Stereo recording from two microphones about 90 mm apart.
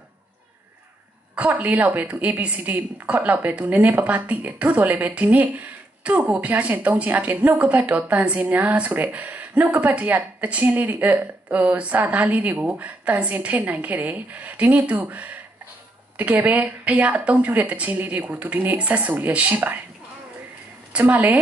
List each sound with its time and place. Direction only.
1.3 s a woman's voice: 15° right (ahead or behind)
20.9 s speech: 20° right (ahead or behind)